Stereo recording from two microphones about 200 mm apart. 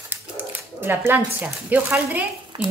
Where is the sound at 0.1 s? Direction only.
10° right (ahead or behind).